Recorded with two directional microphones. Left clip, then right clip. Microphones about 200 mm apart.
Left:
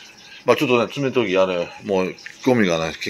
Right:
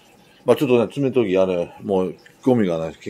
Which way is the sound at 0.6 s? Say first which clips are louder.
Right 1 dB; 30° right (ahead or behind).